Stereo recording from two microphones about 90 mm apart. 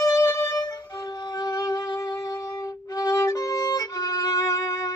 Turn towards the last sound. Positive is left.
turn(degrees=40)  # may be behind; listen again after turning